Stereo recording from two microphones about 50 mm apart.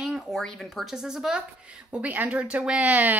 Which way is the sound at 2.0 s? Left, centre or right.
Right.